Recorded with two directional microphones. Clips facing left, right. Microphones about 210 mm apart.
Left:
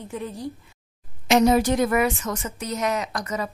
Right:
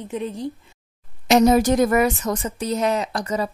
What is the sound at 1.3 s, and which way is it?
A woman's voice, 40° right (ahead or behind).